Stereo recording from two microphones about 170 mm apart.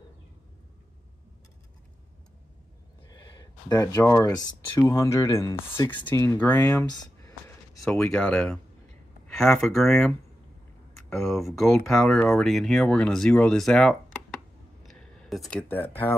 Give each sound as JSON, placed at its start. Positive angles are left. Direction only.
{"t": 3.1, "sound": "speech", "side_deg": 25}
{"t": 7.8, "sound": "speech", "side_deg": 5}
{"t": 14.9, "sound": "a sound", "side_deg": 0}
{"t": 15.7, "sound": "speech", "side_deg": 10}